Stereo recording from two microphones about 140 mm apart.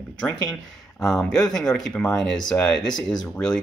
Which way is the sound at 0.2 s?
5° left (ahead or behind).